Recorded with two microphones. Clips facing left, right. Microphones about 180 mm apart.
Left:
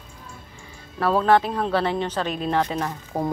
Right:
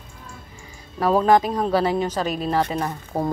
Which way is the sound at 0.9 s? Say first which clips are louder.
Right 2 dB; 15° right (ahead or behind).